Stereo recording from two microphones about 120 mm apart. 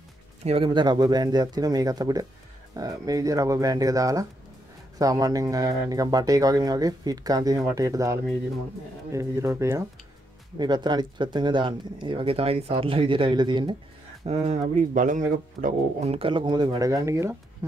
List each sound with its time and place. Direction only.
0.4 s speech: 60° right (ahead or behind)
0.7 s speech: 35° right (ahead or behind)
10.6 s speech: 35° right (ahead or behind)
14.2 s speech: 65° right (ahead or behind)
14.8 s speech: 90° right
16.0 s speech: 55° right (ahead or behind); by 17.4 s 25° right (ahead or behind)